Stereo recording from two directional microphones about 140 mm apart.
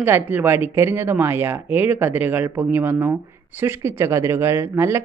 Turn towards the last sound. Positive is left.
turn(degrees=-15)  # may be behind; listen again after turning